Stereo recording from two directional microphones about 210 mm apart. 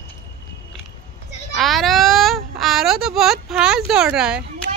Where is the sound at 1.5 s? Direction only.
Centre (ahead or behind).